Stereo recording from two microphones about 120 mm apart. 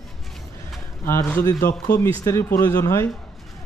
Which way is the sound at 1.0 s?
20° left (ahead or behind).